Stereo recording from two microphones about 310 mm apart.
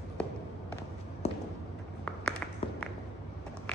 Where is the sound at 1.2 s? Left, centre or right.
Centre.